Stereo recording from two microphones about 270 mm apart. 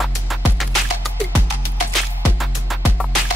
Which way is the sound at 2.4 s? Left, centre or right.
Centre.